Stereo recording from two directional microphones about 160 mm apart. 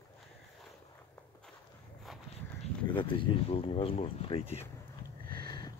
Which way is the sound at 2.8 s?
30° left (ahead or behind).